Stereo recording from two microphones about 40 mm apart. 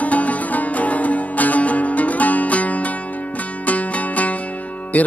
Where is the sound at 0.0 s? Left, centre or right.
Left.